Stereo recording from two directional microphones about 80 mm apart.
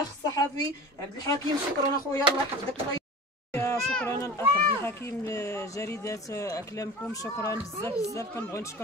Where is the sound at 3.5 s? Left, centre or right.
Left.